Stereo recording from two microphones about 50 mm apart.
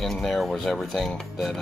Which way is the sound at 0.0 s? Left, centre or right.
Centre.